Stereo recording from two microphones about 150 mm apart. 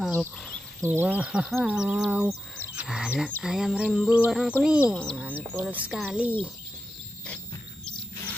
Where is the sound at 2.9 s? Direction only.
5° right (ahead or behind).